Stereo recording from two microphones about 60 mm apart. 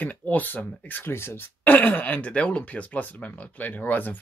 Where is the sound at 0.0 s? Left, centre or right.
Left.